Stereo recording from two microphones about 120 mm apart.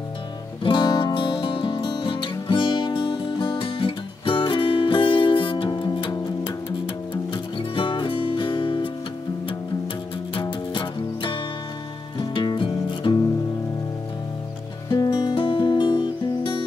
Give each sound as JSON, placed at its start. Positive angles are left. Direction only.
{"t": 0.7, "sound": "music", "side_deg": 40}
{"t": 7.3, "sound": "music", "side_deg": 45}
{"t": 10.4, "sound": "music", "side_deg": 40}
{"t": 15.0, "sound": "music", "side_deg": 40}